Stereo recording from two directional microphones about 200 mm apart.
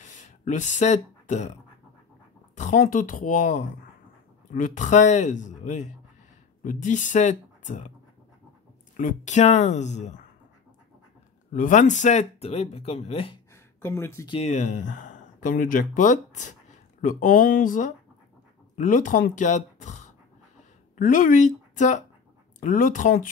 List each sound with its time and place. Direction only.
0.0 s speech: 40° left (ahead or behind)
8.9 s speech: 40° left (ahead or behind)
11.5 s speech: 40° left (ahead or behind)
13.7 s speech: 10° left (ahead or behind)
14.3 s a woman's voice: 35° left (ahead or behind)